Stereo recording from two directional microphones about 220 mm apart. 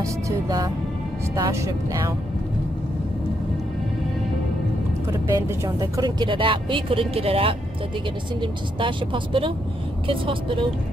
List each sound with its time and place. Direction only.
0.0 s speech: 15° right (ahead or behind)
5.2 s speech: 10° right (ahead or behind)